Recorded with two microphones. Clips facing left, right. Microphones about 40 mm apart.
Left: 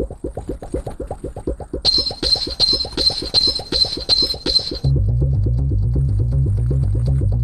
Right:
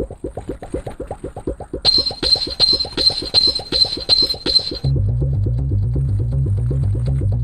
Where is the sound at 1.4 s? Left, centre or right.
Right.